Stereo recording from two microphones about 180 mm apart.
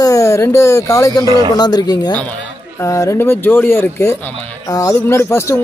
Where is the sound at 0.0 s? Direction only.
15° left (ahead or behind).